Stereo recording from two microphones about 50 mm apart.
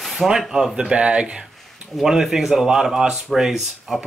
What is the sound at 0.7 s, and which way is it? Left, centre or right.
Speech, centre.